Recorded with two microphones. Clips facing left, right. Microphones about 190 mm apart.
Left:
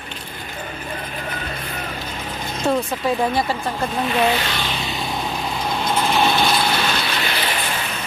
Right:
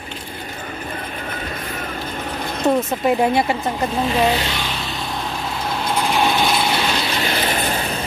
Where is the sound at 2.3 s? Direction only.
60° right (ahead or behind).